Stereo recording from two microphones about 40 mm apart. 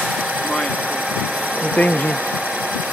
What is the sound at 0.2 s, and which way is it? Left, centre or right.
Engine, right.